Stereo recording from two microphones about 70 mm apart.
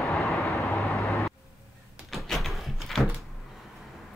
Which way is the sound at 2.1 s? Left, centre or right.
Centre.